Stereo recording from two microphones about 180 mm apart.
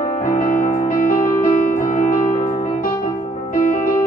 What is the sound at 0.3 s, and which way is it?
Music, 50° left (ahead or behind).